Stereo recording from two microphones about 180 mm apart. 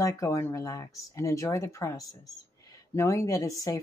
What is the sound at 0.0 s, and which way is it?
Speech, 20° left (ahead or behind).